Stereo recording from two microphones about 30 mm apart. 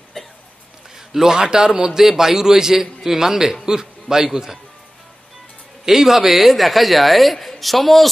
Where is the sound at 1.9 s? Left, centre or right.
Centre.